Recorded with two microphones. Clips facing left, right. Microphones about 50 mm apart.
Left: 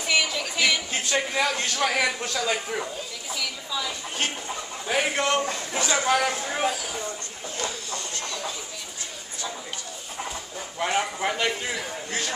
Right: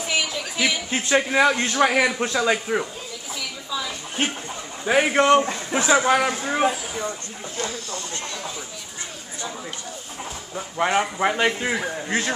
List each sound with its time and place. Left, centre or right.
0.0 s a sound: centre
1.0 s a man's voice: right
3.3 s a sound: centre
4.8 s a man's voice: right
10.5 s speech: right
11.2 s a man's voice: right
11.7 s a man's voice: right